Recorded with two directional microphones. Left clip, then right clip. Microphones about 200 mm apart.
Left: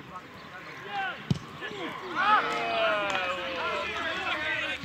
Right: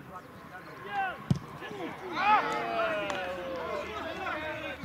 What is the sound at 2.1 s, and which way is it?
Run, 50° left (ahead or behind).